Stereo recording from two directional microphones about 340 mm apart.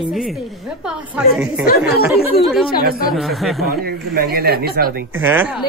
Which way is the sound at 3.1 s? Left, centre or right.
Centre.